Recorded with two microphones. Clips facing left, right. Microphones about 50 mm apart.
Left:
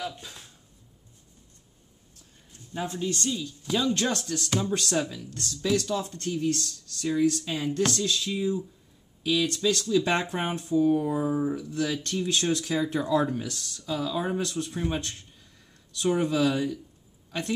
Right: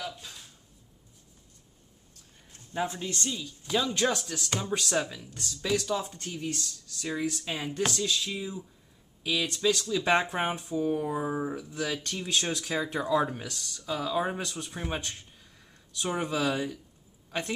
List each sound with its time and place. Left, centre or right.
2.7 s speech: centre
3.3 s speech: centre